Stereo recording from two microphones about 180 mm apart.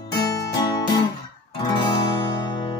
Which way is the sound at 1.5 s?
25° left (ahead or behind).